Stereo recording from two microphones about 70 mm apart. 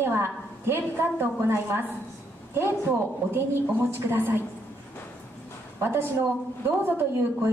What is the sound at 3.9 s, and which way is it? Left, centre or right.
Speech, right.